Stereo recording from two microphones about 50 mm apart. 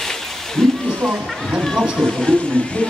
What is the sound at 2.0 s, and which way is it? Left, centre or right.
Speech, centre.